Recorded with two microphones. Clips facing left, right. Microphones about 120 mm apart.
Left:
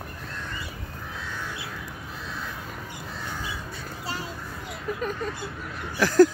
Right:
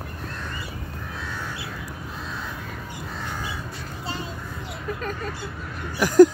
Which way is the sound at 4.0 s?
25° right (ahead or behind).